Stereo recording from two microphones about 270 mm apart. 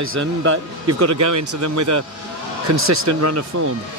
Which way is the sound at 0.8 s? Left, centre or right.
Right.